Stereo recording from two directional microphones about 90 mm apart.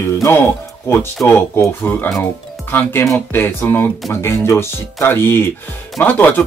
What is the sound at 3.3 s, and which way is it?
Speech, 25° left (ahead or behind).